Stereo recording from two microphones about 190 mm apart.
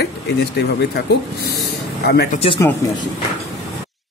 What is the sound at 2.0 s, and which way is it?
Speech, 60° left (ahead or behind).